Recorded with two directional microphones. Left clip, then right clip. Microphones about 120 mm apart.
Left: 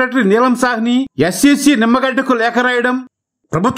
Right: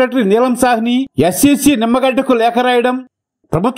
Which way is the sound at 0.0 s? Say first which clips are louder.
Even; 25° right (ahead or behind).